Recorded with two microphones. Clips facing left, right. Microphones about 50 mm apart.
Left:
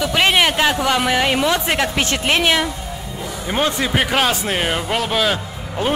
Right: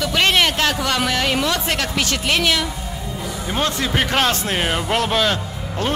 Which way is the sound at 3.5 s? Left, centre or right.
Centre.